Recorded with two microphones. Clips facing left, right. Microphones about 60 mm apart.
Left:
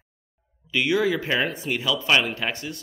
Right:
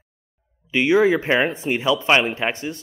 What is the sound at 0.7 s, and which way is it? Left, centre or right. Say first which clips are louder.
Speech: right 6 dB; right.